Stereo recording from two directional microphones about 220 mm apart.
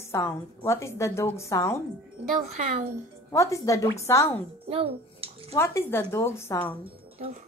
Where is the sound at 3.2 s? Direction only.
15° left (ahead or behind).